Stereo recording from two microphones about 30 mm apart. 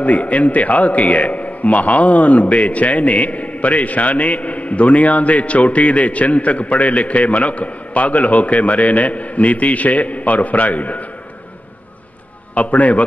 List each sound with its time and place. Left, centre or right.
0.0 s a man's voice: left
12.5 s a man's voice: left